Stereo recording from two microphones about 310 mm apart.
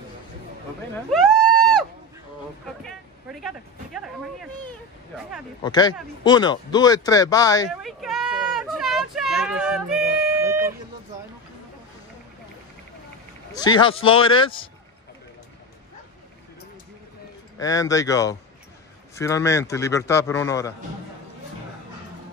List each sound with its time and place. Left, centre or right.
1.1 s a sound: centre
2.8 s vehicle: centre
5.6 s a man's voice: centre
7.8 s a sound: centre
13.5 s a man's voice: centre
17.6 s a man's voice: centre